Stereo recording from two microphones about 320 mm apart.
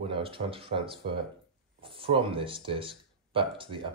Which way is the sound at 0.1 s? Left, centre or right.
Centre.